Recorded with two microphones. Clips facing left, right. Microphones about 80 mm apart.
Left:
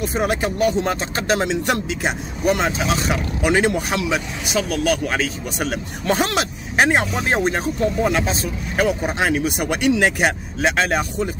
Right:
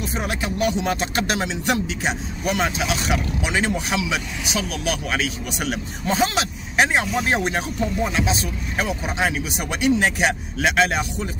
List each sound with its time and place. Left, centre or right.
0.0 s speech: left
6.0 s speech: left